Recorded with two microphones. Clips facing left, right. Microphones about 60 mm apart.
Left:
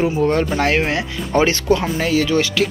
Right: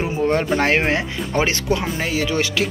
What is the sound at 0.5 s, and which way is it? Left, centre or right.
Speech, right.